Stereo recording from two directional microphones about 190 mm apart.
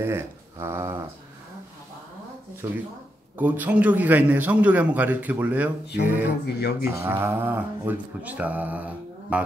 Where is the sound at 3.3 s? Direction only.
10° right (ahead or behind).